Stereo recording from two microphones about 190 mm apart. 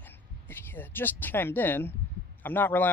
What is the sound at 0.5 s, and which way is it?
A man's voice, 10° left (ahead or behind).